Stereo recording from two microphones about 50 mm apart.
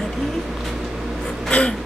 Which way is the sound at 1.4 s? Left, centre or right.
Left.